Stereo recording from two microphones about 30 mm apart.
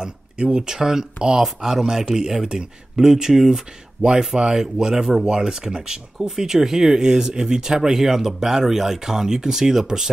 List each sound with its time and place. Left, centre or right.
0.0 s speech: right
3.1 s speech: centre
4.0 s speech: right
4.4 s speech: centre
6.1 s speech: centre